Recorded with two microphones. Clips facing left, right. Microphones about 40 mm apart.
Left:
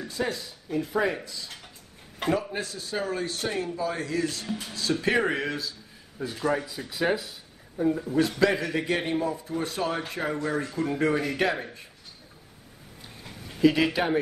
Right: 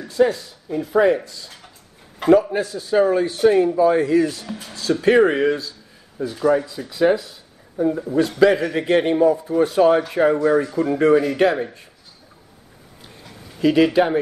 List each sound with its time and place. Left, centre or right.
0.0 s speech: centre
0.7 s speech: centre
6.3 s speech: centre
7.8 s speech: centre
11.2 s speech: centre
13.6 s speech: centre